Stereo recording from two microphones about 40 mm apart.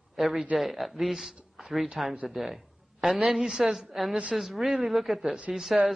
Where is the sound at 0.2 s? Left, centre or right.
Centre.